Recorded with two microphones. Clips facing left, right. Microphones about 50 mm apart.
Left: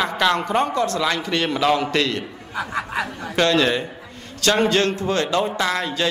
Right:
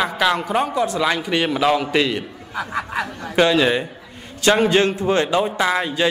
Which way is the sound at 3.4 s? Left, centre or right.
Centre.